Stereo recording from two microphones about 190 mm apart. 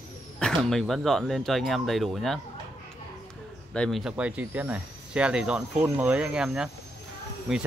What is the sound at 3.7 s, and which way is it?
Speech, centre (ahead or behind).